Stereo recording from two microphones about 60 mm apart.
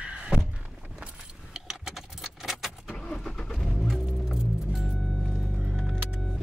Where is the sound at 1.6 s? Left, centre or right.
Centre.